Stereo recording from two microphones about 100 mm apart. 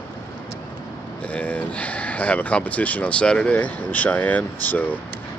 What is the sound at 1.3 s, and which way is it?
Speech, 15° left (ahead or behind).